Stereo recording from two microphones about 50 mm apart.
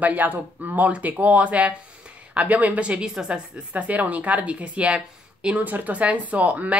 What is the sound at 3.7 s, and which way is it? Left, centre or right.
Speech, right.